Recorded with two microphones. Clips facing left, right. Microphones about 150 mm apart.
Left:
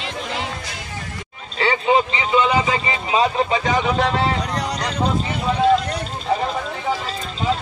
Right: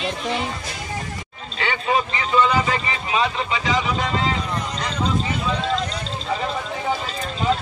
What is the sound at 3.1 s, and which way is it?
Speech, 35° left (ahead or behind).